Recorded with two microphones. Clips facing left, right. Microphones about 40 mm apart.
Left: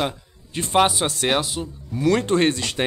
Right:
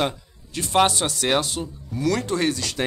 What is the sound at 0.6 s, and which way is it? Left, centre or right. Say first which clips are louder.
Speech: left 2 dB; left.